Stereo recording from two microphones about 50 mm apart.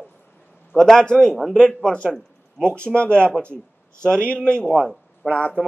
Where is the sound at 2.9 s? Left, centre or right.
Left.